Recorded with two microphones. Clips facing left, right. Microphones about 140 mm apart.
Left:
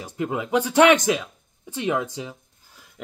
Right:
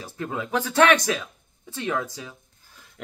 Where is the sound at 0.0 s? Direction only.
15° left (ahead or behind).